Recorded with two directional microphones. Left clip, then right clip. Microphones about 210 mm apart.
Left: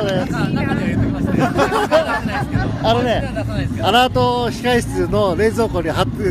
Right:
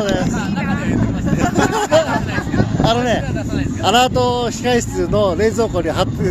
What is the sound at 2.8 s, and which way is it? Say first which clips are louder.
Speech: left 1 dB; 20° right (ahead or behind).